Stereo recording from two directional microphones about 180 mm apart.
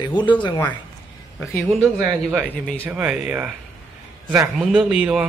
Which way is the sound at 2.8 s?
10° right (ahead or behind).